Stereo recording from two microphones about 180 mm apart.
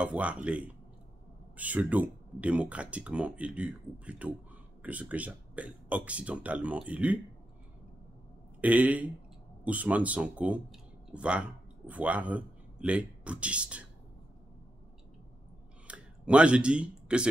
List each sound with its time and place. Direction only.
0.0 s speech: 5° right (ahead or behind)
8.5 s speech: 10° right (ahead or behind)
15.9 s a sound: 5° right (ahead or behind)